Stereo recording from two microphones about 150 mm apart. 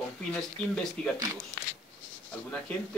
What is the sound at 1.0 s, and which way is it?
Speech, 5° left (ahead or behind).